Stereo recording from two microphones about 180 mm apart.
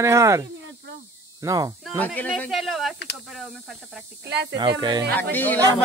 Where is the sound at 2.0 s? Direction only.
5° left (ahead or behind).